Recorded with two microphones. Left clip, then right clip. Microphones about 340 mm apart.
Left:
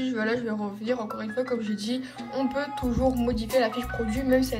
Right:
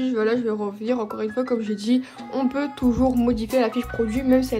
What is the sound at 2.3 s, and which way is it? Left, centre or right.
Music, centre.